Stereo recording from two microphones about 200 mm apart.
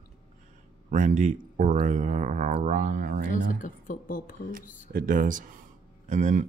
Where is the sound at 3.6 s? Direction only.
40° left (ahead or behind).